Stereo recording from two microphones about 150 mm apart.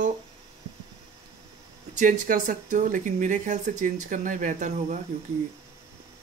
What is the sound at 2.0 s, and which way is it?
Speech, 65° right (ahead or behind).